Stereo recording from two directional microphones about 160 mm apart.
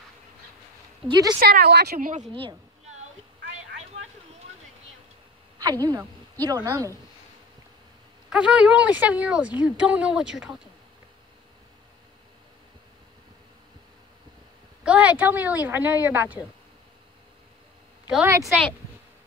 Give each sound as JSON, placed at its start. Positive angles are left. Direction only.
{"t": 1.4, "sound": "a woman's voice", "side_deg": -70}
{"t": 5.6, "sound": "speech", "side_deg": -25}
{"t": 8.3, "sound": "speech", "side_deg": -5}
{"t": 14.8, "sound": "speech", "side_deg": -5}
{"t": 18.0, "sound": "speech", "side_deg": -10}